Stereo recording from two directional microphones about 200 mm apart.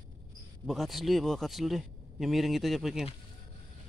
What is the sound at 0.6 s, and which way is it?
A man's voice, centre (ahead or behind).